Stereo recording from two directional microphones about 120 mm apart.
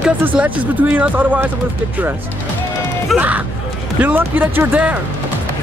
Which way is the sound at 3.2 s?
15° right (ahead or behind).